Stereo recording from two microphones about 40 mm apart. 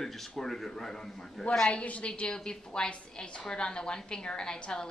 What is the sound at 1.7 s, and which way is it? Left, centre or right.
A woman's voice, left.